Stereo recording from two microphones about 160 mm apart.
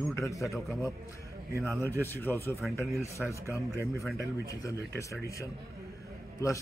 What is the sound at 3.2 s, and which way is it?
Speech, 5° right (ahead or behind).